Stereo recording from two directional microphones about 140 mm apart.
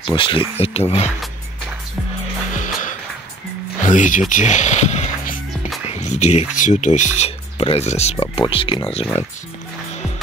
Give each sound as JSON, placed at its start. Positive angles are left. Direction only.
{"t": 0.0, "sound": "speech", "side_deg": 35}
{"t": 0.6, "sound": "speech", "side_deg": 50}
{"t": 2.5, "sound": "music", "side_deg": 65}
{"t": 3.8, "sound": "speech", "side_deg": 65}